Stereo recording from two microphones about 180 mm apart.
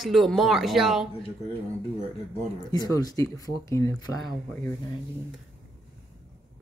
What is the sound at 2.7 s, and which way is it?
Speech, 20° left (ahead or behind).